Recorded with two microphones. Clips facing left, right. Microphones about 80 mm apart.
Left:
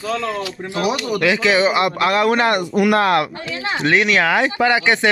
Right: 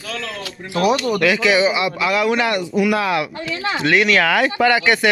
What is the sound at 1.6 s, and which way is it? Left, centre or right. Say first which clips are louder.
Speech: left 2 dB; left.